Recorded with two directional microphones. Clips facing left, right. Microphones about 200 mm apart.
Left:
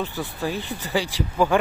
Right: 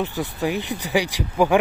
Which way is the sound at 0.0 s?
15° right (ahead or behind).